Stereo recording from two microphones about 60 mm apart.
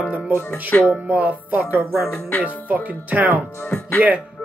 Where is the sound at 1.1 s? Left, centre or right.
Right.